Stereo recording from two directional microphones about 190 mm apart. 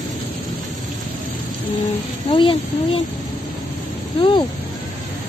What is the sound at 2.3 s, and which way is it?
Speech, 25° left (ahead or behind).